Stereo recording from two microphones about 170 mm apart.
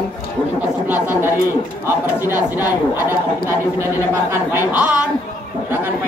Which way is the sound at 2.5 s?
10° right (ahead or behind).